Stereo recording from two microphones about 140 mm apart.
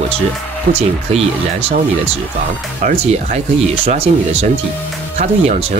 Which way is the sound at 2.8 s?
60° right (ahead or behind).